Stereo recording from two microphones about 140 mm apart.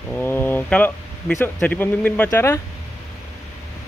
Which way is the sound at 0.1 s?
15° left (ahead or behind).